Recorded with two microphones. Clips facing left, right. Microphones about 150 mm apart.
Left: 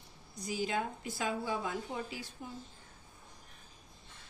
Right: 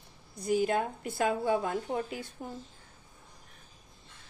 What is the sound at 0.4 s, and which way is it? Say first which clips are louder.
A woman's voice: right 7 dB; 55° right (ahead or behind).